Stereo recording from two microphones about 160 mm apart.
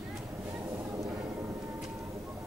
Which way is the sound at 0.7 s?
20° right (ahead or behind).